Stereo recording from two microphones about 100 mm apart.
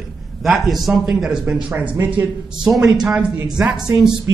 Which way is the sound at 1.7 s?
30° right (ahead or behind).